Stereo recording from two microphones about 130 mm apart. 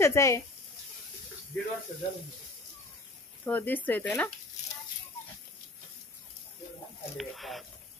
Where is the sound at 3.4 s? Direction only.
15° left (ahead or behind).